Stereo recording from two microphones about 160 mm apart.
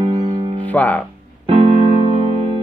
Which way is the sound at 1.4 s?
40° right (ahead or behind).